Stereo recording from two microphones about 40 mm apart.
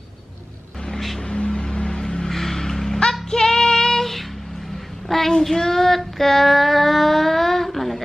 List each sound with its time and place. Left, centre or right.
0.9 s music: centre
1.2 s music: left
2.2 s vehicle: centre
3.0 s child singing: centre